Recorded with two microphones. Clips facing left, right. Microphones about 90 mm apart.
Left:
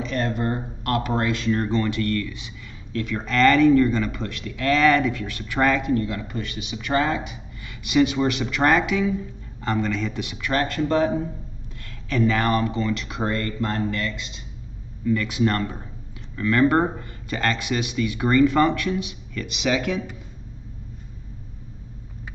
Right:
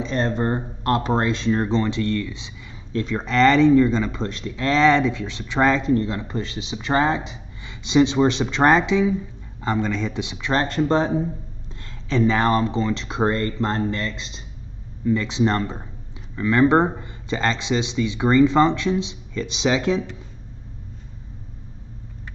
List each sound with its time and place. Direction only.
0.0 s speech: 30° right (ahead or behind)